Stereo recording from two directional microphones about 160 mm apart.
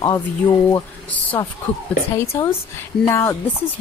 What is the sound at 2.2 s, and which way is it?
Speech, 15° left (ahead or behind).